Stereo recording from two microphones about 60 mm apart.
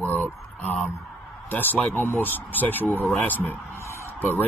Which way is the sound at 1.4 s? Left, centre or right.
Left.